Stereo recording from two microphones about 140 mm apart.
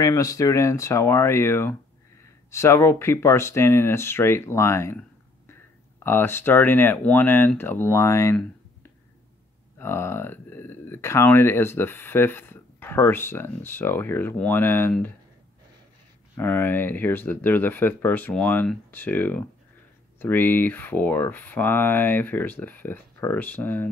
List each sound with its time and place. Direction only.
0.0 s speech: 25° left (ahead or behind)
6.0 s speech: 15° left (ahead or behind)
9.8 s speech: 15° left (ahead or behind)
16.3 s speech: 15° left (ahead or behind)